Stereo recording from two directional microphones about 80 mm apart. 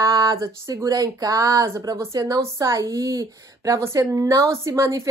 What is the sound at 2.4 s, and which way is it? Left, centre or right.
A woman's voice, right.